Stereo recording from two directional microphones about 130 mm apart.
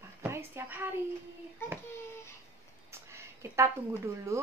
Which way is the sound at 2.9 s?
20° right (ahead or behind).